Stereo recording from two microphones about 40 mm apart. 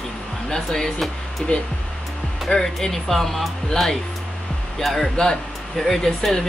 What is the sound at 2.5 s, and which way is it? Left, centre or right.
Speech, centre.